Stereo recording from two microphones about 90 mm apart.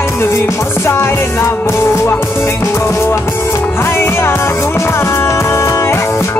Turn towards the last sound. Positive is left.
turn(degrees=30)  # may be behind; listen again after turning